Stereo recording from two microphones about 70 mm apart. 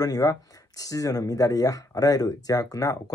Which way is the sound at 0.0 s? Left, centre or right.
Left.